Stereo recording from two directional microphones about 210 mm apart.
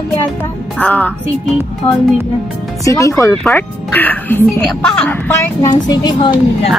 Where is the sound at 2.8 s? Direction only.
15° left (ahead or behind).